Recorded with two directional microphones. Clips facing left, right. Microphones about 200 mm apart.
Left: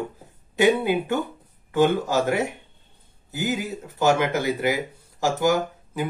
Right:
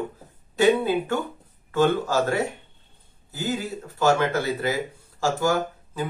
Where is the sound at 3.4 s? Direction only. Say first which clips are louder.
Left 1 dB; 20° left (ahead or behind).